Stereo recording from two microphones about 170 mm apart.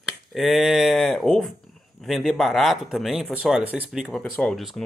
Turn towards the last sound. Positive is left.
turn(degrees=0)  # may be behind; listen again after turning